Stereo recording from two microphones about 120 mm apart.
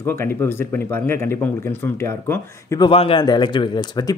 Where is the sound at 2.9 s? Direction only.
55° left (ahead or behind).